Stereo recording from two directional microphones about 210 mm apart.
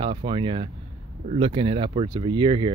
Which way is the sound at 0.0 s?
25° right (ahead or behind).